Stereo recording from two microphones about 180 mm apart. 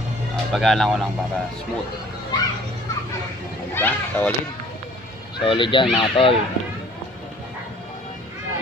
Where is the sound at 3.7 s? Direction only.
10° left (ahead or behind).